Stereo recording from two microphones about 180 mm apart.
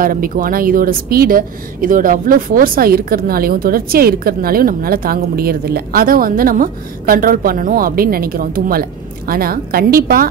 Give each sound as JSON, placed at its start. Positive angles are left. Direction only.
{"t": 0.0, "sound": "a woman's voice", "side_deg": -50}